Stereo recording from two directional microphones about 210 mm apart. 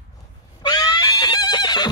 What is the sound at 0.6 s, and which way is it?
Neigh, 20° left (ahead or behind).